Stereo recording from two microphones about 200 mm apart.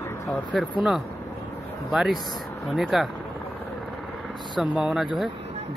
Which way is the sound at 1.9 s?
Centre (ahead or behind).